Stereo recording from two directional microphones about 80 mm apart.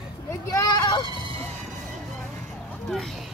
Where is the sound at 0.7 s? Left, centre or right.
Left.